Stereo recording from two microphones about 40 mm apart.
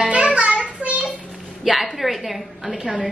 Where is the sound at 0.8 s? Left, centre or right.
Right.